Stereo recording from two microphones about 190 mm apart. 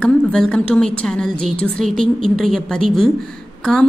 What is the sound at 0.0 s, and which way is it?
A woman's voice, 5° left (ahead or behind).